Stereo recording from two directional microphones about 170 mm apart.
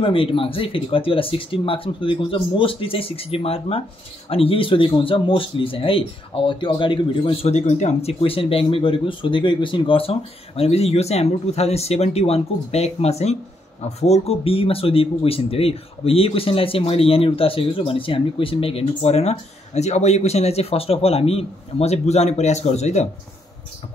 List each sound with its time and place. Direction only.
0.0 s speech: 30° left (ahead or behind)